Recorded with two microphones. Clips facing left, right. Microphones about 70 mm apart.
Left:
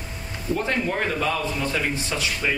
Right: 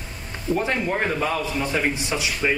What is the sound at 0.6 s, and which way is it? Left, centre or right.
A man's voice, centre.